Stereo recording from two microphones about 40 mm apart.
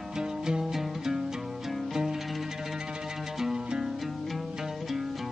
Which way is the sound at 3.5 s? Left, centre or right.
Centre.